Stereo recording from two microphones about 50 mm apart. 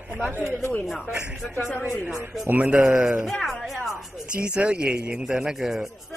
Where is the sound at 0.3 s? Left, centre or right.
Right.